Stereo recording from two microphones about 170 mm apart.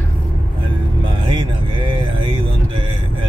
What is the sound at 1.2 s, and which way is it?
Speech, 30° right (ahead or behind).